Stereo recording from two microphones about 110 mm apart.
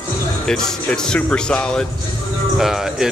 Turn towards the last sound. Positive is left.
turn(degrees=-5)  # may be behind; listen again after turning